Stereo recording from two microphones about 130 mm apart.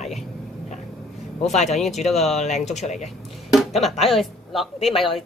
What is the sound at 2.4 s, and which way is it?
Speech, 60° left (ahead or behind).